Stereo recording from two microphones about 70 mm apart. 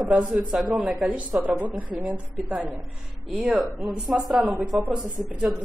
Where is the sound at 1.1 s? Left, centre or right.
Centre.